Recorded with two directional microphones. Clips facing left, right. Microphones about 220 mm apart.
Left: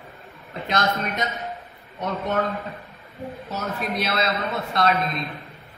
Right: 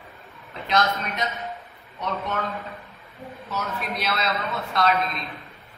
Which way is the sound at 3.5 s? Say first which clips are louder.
Left 2 dB; 50° left (ahead or behind).